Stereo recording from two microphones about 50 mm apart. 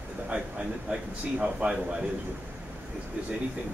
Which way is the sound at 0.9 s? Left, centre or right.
Centre.